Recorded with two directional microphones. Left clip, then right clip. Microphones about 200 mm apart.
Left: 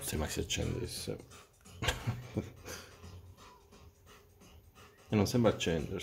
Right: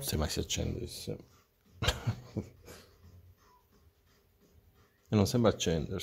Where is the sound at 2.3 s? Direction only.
15° right (ahead or behind).